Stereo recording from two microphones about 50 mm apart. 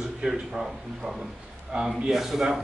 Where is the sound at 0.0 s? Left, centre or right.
Centre.